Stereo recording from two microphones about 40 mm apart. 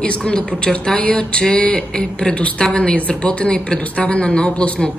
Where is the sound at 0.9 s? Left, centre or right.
Left.